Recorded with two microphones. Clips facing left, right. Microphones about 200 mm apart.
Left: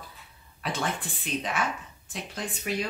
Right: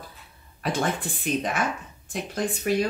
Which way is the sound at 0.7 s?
45° right (ahead or behind).